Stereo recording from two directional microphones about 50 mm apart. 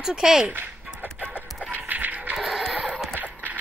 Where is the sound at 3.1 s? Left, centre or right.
Right.